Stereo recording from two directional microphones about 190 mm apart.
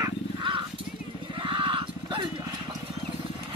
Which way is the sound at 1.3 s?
25° right (ahead or behind).